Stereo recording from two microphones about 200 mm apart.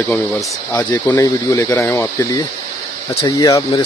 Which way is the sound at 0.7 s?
15° left (ahead or behind).